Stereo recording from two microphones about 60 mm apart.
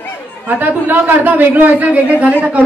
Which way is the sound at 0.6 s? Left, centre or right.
Right.